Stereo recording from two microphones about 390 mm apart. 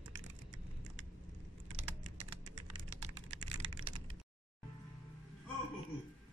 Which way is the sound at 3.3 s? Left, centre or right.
Centre.